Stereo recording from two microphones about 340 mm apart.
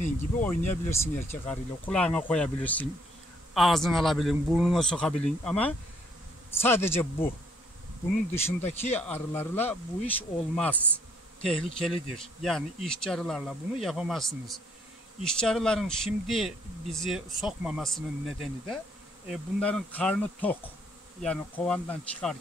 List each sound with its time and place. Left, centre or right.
0.4 s a man's voice: centre
8.5 s speech: centre
8.9 s speech: centre